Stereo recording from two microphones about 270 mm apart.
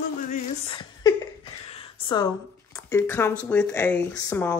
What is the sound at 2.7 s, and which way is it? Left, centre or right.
Speech, centre.